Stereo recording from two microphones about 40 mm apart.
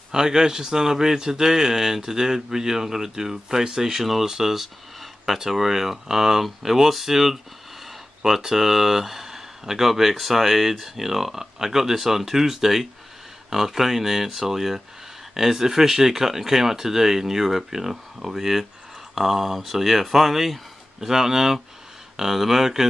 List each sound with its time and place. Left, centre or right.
0.1 s speech: centre